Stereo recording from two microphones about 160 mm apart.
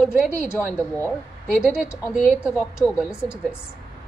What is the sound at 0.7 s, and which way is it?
Speech, 15° left (ahead or behind).